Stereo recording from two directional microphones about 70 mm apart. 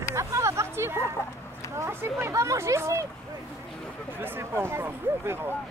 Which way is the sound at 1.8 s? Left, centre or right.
Right.